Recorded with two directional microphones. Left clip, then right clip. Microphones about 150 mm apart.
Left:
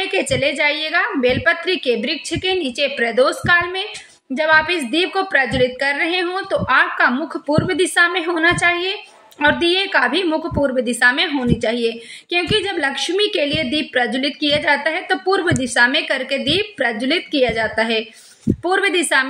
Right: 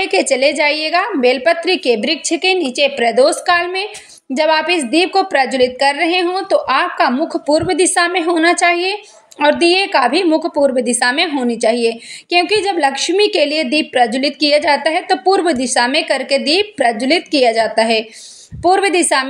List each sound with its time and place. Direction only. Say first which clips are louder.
0.0 s a woman's voice: right 5 dB; 20° right (ahead or behind)